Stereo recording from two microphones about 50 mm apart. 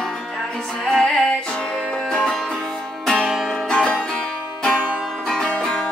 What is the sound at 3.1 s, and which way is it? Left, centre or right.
Music, centre.